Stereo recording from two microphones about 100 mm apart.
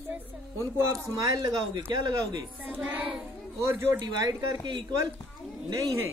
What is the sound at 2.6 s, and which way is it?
Child singing, 15° right (ahead or behind).